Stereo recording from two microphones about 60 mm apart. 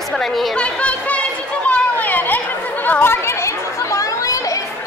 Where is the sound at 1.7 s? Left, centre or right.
Left.